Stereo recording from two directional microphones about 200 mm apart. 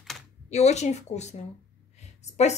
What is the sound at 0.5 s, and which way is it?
Speech, 35° left (ahead or behind).